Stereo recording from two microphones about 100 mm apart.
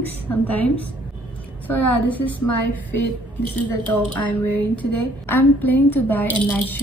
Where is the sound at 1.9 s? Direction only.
15° left (ahead or behind).